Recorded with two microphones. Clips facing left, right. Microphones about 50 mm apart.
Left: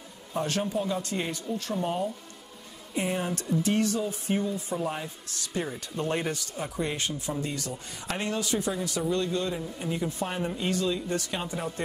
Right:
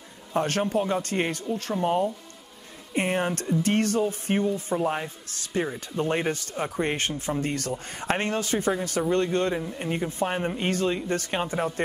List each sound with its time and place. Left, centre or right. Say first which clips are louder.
0.3 s speech: right 4 dB; right
1.5 s speech: right 4 dB; right
2.9 s speech: right 4 dB; right
5.6 s speech: right 4 dB; right
6.3 s speech: right 4 dB; right